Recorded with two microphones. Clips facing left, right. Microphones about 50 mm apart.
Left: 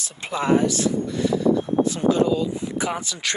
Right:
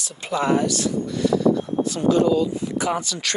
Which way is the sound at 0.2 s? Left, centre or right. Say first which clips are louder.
Left 1 dB; left.